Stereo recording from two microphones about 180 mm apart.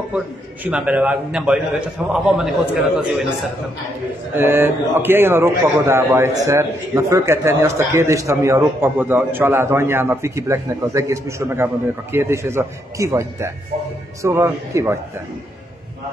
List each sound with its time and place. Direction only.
0.7 s a man's voice: 5° right (ahead or behind)
4.4 s a man's voice: 10° right (ahead or behind)